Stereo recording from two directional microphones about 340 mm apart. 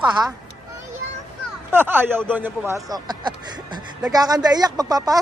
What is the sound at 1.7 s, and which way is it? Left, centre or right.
Speech, centre.